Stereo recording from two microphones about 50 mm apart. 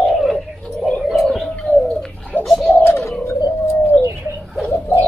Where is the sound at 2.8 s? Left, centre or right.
Left.